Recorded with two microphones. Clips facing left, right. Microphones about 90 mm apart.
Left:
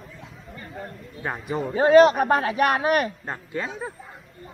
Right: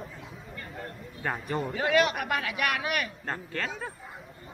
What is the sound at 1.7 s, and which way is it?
A man's voice, 35° left (ahead or behind).